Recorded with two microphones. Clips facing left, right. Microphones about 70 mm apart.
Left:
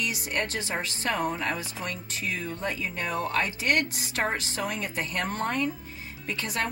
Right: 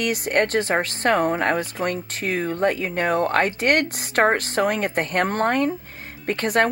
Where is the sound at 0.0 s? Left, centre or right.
Right.